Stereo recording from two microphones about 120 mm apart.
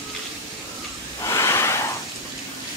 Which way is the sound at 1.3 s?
25° left (ahead or behind).